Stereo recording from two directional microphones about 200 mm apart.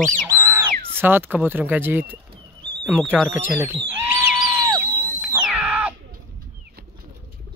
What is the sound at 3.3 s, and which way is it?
Speech, 10° right (ahead or behind).